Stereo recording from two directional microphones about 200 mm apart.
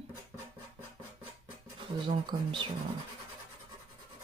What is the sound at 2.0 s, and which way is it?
Speech, 25° right (ahead or behind).